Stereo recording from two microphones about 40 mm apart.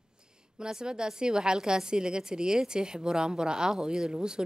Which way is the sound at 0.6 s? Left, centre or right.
Centre.